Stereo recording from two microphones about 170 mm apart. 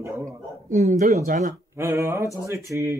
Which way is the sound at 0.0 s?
20° right (ahead or behind).